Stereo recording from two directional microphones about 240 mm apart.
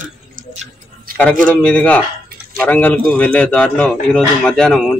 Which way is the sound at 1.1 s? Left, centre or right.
Right.